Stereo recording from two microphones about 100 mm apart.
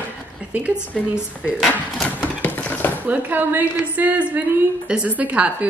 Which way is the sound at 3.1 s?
15° right (ahead or behind).